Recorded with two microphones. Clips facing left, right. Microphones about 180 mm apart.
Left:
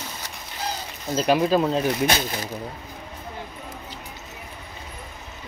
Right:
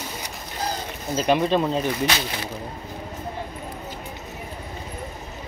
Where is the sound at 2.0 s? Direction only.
45° left (ahead or behind).